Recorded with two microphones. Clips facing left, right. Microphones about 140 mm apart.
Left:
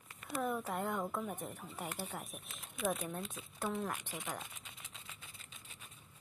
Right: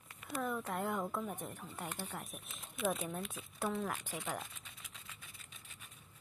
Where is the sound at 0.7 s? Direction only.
Centre (ahead or behind).